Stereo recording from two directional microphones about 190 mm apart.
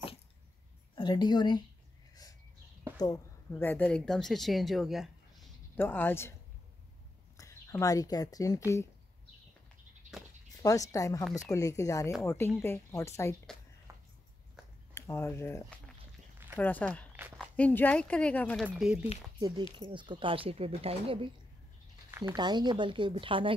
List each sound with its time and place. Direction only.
0.9 s speech: 20° left (ahead or behind)
3.0 s speech: 15° left (ahead or behind); by 5.1 s centre (ahead or behind)
5.8 s speech: 10° left (ahead or behind)
7.3 s speech: 15° left (ahead or behind)
10.6 s speech: 15° left (ahead or behind)
13.9 s a sound: 15° right (ahead or behind)
15.0 s speech: 15° left (ahead or behind)
18.7 s speech: 5° right (ahead or behind)
19.8 s speech: 25° right (ahead or behind)